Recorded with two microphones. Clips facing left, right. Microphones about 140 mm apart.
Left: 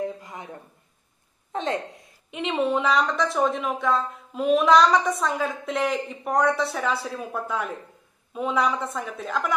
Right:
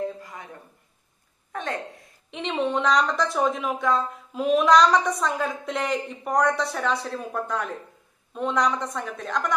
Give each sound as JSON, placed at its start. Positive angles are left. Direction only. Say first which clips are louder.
{"t": 0.0, "sound": "a sound", "louder": "even", "side_deg": 20}
{"t": 1.5, "sound": "a woman's voice", "louder": "left 4 dB", "side_deg": 25}
{"t": 2.3, "sound": "speech", "louder": "left 2 dB", "side_deg": 5}